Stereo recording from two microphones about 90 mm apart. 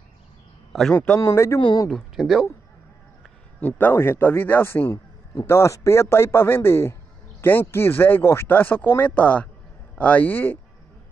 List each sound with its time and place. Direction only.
0.7 s a man's voice: 5° right (ahead or behind)
1.2 s speech: 30° left (ahead or behind)
1.6 s speech: 55° left (ahead or behind)
1.9 s speech: 5° left (ahead or behind)
3.6 s speech: 20° left (ahead or behind)
4.9 s a sound: 50° left (ahead or behind)
5.5 s speech: 30° left (ahead or behind)